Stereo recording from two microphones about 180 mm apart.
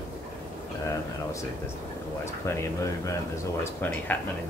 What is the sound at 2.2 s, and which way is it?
Speech, 15° left (ahead or behind).